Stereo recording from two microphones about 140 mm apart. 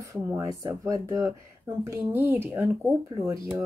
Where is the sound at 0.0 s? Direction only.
25° right (ahead or behind).